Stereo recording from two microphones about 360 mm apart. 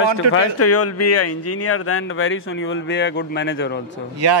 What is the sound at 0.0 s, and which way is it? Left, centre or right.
A man's voice, left.